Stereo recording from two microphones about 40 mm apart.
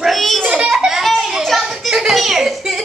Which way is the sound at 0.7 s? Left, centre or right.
Centre.